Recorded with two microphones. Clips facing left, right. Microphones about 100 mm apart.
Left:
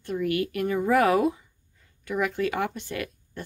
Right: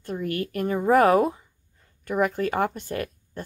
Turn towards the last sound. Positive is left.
turn(degrees=-40)  # may be behind; listen again after turning